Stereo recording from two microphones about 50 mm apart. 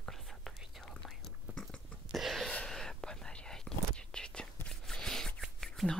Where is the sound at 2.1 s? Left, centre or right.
Centre.